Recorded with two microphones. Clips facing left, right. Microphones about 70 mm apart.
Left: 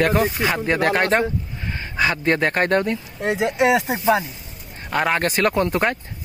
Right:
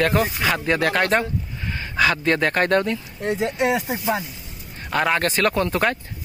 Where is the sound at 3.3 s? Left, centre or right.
Left.